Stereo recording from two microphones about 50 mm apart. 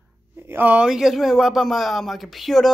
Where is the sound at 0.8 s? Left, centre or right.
Centre.